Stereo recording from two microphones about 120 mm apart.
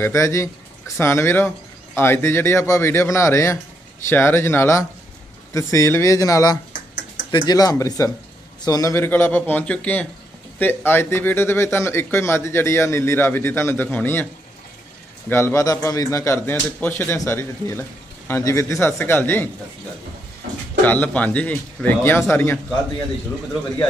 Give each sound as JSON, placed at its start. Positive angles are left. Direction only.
{"t": 0.0, "sound": "a man's voice", "side_deg": 25}
{"t": 15.2, "sound": "speech", "side_deg": 20}
{"t": 20.8, "sound": "a man's voice", "side_deg": 15}